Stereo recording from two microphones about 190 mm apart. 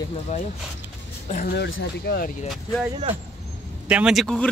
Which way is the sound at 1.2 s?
40° left (ahead or behind).